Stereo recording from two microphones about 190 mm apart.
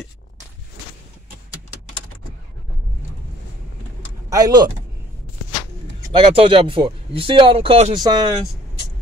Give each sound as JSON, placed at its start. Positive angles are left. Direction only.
{"t": 4.3, "sound": "speech", "side_deg": -20}
{"t": 6.1, "sound": "speech", "side_deg": -25}